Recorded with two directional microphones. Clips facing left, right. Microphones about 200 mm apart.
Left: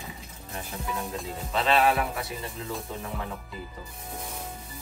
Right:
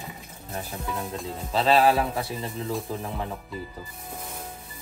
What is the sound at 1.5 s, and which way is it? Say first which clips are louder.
Speech: right 3 dB; 35° right (ahead or behind).